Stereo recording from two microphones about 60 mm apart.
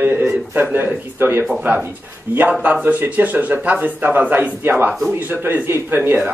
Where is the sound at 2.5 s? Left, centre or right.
Right.